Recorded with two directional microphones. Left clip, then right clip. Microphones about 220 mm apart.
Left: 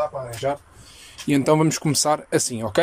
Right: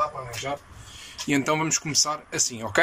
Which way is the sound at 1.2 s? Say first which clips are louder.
Left 5 dB; 20° left (ahead or behind).